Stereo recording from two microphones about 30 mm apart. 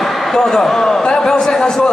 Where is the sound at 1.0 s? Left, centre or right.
Left.